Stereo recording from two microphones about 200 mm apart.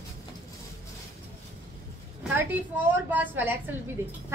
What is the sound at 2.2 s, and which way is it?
A woman's voice, 10° right (ahead or behind).